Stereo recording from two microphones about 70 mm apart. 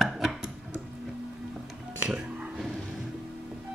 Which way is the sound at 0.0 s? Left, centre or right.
Centre.